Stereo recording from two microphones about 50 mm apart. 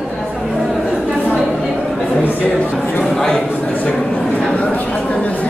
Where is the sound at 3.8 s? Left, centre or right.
Left.